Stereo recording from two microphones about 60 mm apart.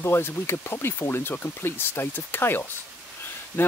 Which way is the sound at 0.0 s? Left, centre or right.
Left.